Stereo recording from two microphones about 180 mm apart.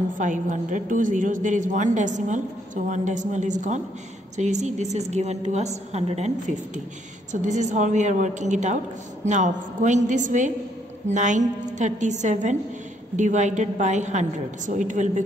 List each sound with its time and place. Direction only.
0.2 s a woman's voice: 45° right (ahead or behind)